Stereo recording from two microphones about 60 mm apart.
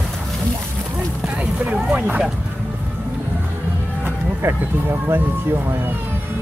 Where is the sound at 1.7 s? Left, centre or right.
Right.